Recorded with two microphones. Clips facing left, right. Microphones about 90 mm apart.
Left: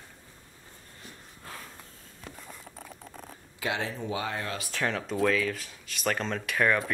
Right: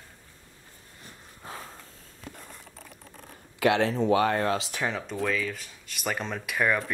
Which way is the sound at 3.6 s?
70° right (ahead or behind).